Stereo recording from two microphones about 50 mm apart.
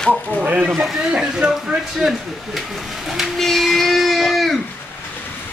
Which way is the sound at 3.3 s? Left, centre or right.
Centre.